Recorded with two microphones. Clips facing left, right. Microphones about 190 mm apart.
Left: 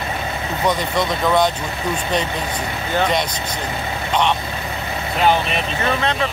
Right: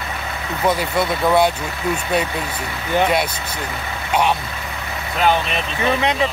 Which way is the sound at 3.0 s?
10° right (ahead or behind).